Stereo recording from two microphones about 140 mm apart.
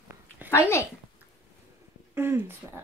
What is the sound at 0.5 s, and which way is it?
Speech, 15° left (ahead or behind).